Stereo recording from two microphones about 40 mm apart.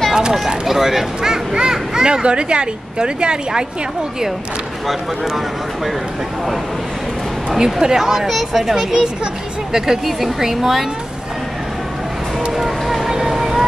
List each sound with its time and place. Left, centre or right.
0.1 s speech: centre
4.8 s speech: centre
7.4 s speech: centre
9.2 s a sound: centre
10.0 s speech: centre
12.5 s music: centre
13.1 s vehicle: centre